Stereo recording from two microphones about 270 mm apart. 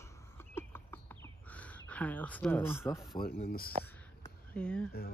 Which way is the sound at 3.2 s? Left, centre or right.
Left.